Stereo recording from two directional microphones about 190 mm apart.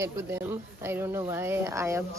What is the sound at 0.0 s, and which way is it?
Speech, 10° right (ahead or behind).